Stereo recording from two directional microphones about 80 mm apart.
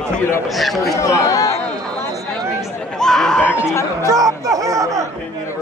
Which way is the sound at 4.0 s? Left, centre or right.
Right.